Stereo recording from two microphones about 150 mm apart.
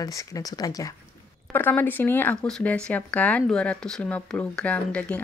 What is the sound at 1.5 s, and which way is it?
Speech, 10° left (ahead or behind).